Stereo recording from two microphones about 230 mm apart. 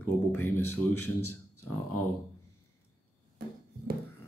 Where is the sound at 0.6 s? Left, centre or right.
Left.